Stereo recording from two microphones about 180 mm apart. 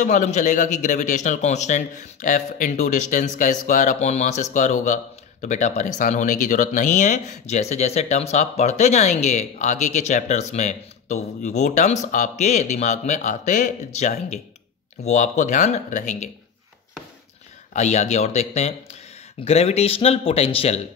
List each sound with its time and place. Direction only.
0.0 s a man's voice: 45° left (ahead or behind)
17.7 s a man's voice: 40° left (ahead or behind)